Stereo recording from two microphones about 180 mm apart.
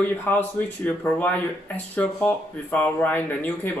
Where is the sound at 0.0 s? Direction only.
10° left (ahead or behind).